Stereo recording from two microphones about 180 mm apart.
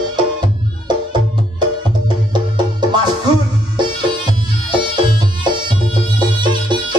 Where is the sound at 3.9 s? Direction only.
25° right (ahead or behind).